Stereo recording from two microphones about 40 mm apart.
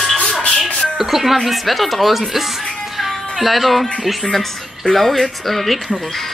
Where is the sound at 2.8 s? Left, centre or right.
Centre.